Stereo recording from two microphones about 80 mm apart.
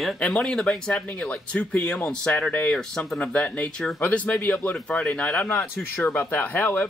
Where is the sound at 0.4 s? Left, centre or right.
Centre.